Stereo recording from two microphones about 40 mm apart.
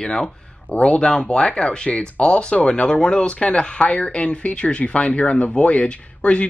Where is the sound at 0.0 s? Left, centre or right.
Centre.